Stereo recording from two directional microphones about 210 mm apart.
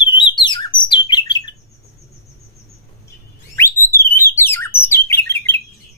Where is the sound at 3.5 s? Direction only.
10° left (ahead or behind).